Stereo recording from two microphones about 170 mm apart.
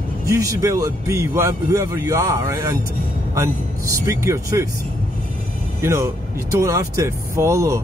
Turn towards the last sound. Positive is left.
turn(degrees=-15)  # may be behind; listen again after turning